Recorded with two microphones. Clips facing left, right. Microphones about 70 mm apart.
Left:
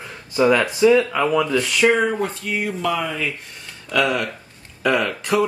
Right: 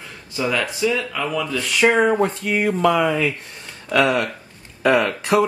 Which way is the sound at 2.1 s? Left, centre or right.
Right.